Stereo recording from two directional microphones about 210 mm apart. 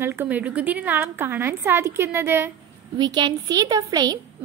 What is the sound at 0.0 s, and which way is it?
A woman's voice, 10° right (ahead or behind).